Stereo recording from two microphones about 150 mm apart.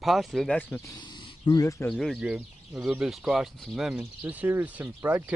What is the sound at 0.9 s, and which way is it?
Speech, 30° left (ahead or behind).